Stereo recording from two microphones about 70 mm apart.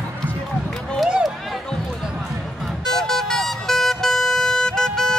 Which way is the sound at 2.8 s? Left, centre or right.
Centre.